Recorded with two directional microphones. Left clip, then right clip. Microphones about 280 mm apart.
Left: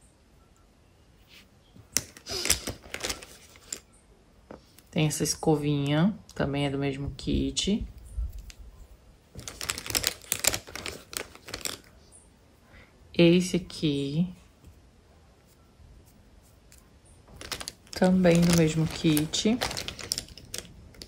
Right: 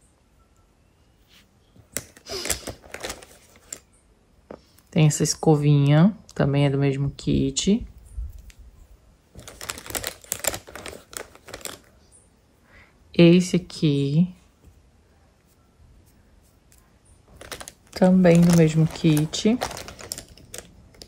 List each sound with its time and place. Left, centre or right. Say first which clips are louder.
2.0 s a sound: left 1 dB; centre
4.5 s speech: right 5 dB; right
9.4 s typewriter: left 1 dB; centre
12.7 s speech: right 5 dB; right
17.4 s typing: left 1 dB; centre
17.9 s speech: right 5 dB; right
19.6 s typing: right 1 dB; centre